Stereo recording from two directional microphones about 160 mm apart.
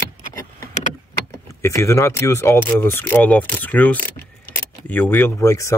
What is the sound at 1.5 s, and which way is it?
Speech, 15° left (ahead or behind).